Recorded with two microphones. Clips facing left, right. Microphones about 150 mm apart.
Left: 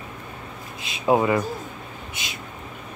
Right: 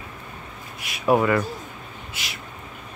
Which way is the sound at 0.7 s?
25° left (ahead or behind).